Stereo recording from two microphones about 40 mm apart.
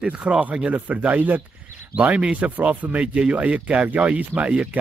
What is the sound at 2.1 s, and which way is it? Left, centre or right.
Speech, right.